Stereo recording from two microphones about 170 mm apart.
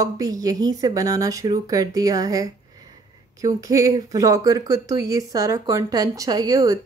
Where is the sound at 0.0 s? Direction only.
20° right (ahead or behind).